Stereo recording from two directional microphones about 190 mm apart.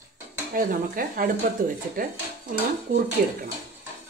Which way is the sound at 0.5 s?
50° right (ahead or behind).